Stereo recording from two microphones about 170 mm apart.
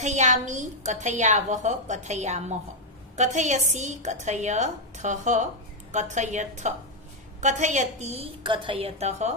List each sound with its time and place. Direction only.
0.0 s a woman's voice: 45° right (ahead or behind)